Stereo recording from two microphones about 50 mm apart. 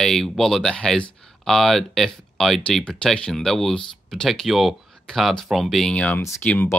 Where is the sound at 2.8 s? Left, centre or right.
Centre.